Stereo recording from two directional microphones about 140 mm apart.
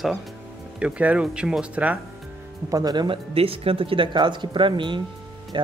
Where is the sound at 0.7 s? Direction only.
10° right (ahead or behind).